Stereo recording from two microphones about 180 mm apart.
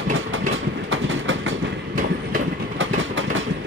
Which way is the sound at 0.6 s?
90° right.